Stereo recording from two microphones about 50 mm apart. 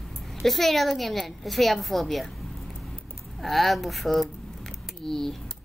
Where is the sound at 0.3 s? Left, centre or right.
Centre.